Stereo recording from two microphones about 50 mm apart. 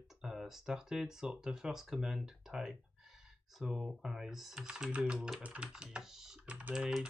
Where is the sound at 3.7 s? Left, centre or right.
Centre; by 5.7 s right.